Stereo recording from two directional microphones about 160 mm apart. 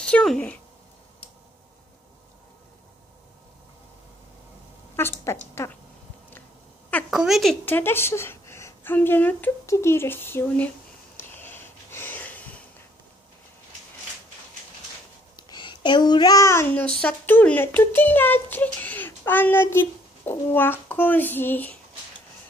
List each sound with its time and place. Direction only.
0.0 s speech: 5° left (ahead or behind)
4.9 s speech: 15° left (ahead or behind)
7.1 s a woman's voice: centre (ahead or behind)
7.6 s child singing: 15° left (ahead or behind)
11.1 s sniff: 15° left (ahead or behind)
15.5 s child singing: 30° left (ahead or behind); by 21.7 s 10° left (ahead or behind)